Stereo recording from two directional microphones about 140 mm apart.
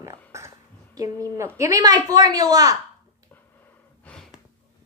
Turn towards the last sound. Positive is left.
turn(degrees=5)  # may be behind; listen again after turning